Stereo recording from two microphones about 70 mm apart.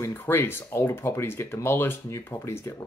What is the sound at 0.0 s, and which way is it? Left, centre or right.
Speech, left.